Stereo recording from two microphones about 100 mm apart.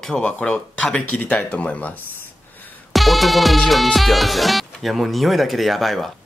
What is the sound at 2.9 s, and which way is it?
Music, centre (ahead or behind).